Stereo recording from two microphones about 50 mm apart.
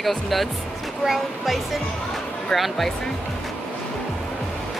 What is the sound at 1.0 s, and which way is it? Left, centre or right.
Speech, centre.